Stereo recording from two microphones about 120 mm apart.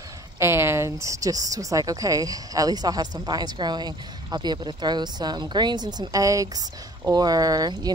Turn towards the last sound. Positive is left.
turn(degrees=-35)  # may be behind; listen again after turning